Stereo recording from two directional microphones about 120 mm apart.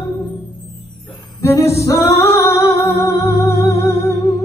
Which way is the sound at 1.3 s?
25° left (ahead or behind).